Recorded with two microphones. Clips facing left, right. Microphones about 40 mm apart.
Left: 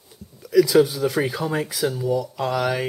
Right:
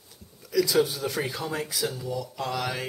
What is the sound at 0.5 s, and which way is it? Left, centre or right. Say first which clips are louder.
Speech: left 7 dB; centre.